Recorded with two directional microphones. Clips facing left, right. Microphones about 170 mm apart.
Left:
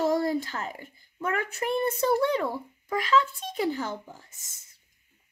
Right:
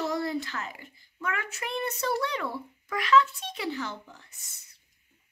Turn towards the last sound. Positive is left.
turn(degrees=45)  # may be behind; listen again after turning